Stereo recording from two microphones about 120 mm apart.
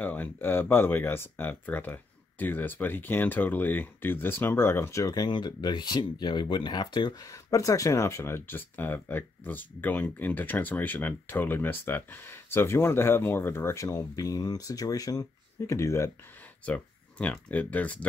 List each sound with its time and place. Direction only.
0.0 s speech: 15° left (ahead or behind)
16.6 s speech: 10° left (ahead or behind)